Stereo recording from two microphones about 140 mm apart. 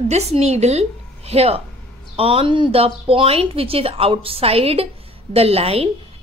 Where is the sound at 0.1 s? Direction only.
50° right (ahead or behind).